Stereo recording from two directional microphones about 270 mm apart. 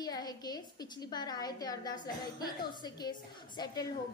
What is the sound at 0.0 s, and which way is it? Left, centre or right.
A woman's voice, centre.